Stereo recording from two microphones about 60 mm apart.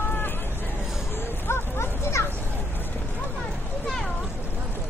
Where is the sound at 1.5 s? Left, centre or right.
Left.